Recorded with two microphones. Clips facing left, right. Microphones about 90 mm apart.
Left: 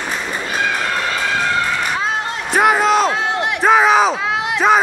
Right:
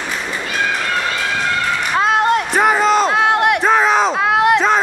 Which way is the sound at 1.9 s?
65° right (ahead or behind).